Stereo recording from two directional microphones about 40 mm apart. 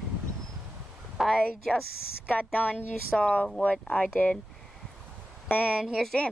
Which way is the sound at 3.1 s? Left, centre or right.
Left.